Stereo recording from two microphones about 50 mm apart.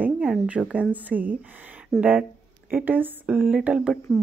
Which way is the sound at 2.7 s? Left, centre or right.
Right.